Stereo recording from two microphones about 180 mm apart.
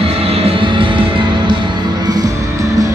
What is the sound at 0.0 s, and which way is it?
Music, 35° right (ahead or behind).